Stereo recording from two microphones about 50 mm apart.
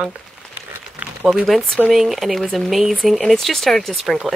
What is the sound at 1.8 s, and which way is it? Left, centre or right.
Speech, centre.